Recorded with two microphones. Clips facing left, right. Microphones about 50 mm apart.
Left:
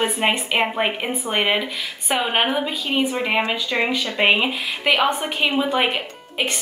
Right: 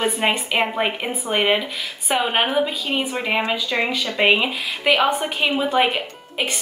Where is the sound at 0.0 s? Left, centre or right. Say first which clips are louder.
Even; centre.